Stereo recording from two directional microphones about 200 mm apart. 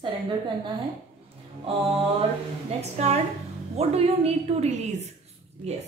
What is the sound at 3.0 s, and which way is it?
A woman's voice, 35° right (ahead or behind).